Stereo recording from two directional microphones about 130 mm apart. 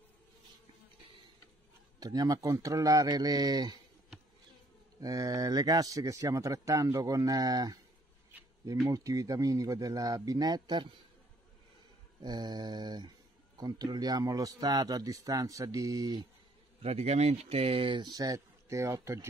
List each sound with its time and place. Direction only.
2.0 s speech: 30° right (ahead or behind)
5.0 s speech: 30° right (ahead or behind)
8.8 s speech: 25° right (ahead or behind)
12.2 s mantra: 35° right (ahead or behind)
13.6 s speech: 30° right (ahead or behind)
16.8 s speech: 50° right (ahead or behind); by 19.2 s 25° right (ahead or behind)